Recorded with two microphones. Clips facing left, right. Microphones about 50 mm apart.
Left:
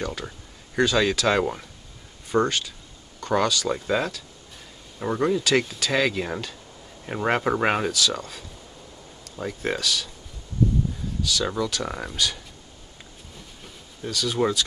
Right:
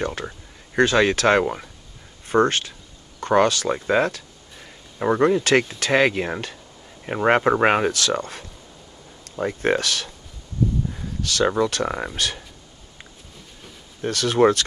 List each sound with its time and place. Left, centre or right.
0.7 s speech: right
1.4 s speech: right
2.2 s speech: right
3.7 s speech: right
7.9 s speech: right
11.2 s speech: right
14.0 s speech: right